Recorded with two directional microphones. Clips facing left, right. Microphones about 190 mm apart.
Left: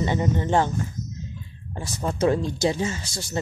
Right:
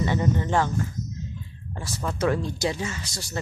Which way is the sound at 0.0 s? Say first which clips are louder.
Left 1 dB; 20° left (ahead or behind).